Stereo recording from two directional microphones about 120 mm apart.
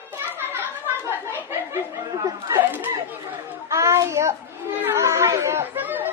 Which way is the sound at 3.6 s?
25° right (ahead or behind).